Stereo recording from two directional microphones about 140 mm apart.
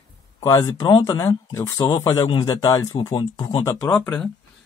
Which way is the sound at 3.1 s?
35° left (ahead or behind).